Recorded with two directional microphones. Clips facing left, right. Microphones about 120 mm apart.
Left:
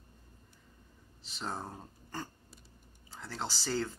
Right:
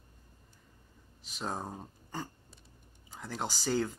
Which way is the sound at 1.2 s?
10° right (ahead or behind).